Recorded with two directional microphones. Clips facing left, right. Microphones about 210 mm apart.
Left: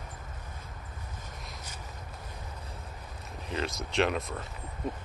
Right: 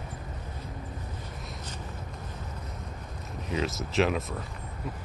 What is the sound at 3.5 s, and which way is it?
Speech, 5° right (ahead or behind).